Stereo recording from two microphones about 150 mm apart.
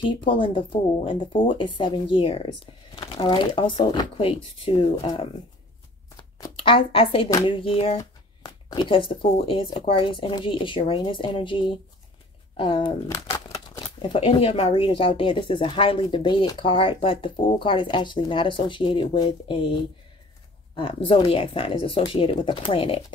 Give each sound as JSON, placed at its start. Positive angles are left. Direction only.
{"t": 0.0, "sound": "speech", "side_deg": 35}
{"t": 6.4, "sound": "speech", "side_deg": 35}
{"t": 13.1, "sound": "crumpling", "side_deg": 20}
{"t": 14.0, "sound": "speech", "side_deg": 35}